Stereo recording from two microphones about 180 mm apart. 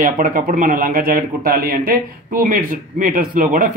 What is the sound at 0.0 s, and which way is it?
Speech, 50° right (ahead or behind).